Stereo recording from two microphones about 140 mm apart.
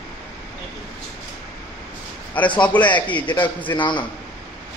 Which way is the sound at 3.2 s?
35° left (ahead or behind).